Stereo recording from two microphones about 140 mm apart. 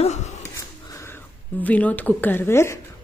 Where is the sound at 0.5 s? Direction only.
20° left (ahead or behind).